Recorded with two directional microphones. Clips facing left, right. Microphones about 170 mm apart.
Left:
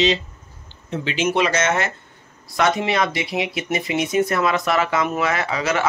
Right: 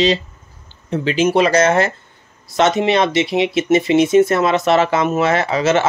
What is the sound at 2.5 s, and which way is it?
Speech, 20° right (ahead or behind).